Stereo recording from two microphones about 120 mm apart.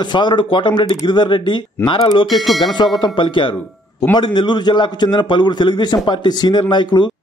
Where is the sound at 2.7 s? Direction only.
40° left (ahead or behind).